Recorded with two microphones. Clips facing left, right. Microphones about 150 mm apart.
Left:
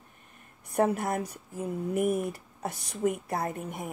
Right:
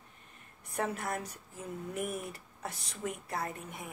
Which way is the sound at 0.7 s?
45° left (ahead or behind).